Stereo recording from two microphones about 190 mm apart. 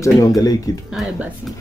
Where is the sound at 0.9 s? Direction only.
5° right (ahead or behind).